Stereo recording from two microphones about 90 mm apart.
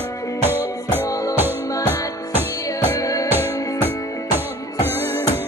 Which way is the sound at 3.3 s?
25° right (ahead or behind).